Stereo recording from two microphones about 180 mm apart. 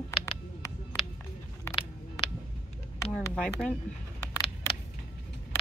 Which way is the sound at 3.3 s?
5° left (ahead or behind).